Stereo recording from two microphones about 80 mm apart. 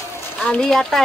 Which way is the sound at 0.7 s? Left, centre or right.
Centre.